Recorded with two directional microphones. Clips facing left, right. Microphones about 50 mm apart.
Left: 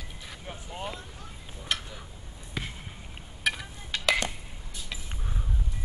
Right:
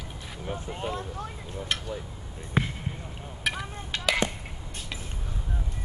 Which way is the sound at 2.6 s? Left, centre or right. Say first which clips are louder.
Right 9 dB; right.